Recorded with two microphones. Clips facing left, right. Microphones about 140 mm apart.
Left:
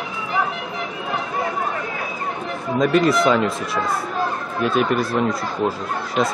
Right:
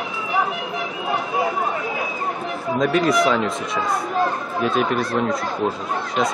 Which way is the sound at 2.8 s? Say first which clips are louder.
Left 2 dB; centre (ahead or behind).